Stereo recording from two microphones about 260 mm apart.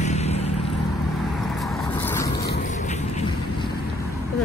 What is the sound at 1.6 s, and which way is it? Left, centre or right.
Vehicle, centre.